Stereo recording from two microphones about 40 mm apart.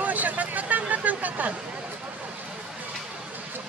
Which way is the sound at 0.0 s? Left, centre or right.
Right.